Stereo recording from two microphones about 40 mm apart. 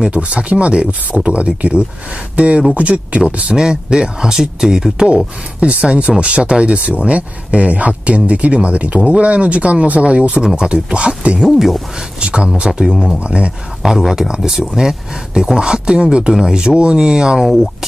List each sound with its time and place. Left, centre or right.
0.1 s speech: right
3.5 s speech: centre
5.1 s speech: right
11.4 s speech: centre
12.2 s speech: right
13.8 s speech: centre